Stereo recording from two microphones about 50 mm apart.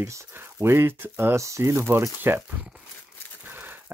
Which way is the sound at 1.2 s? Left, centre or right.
Right.